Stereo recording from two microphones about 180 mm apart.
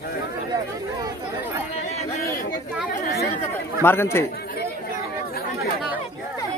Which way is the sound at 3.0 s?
60° left (ahead or behind).